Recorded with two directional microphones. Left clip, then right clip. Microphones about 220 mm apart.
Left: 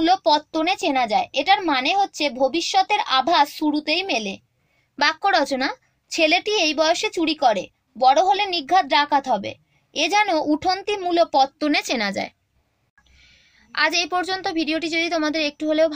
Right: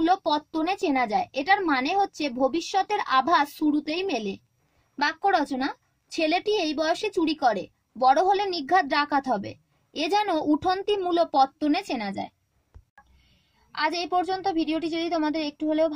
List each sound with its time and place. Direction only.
0.0 s a woman's voice: 15° right (ahead or behind)
12.0 s a woman's voice: 5° left (ahead or behind)
13.7 s a woman's voice: 5° left (ahead or behind)